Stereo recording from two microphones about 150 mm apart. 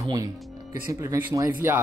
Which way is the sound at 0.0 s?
25° right (ahead or behind).